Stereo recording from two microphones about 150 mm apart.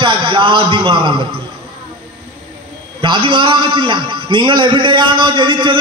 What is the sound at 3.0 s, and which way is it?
A man's voice, 35° right (ahead or behind).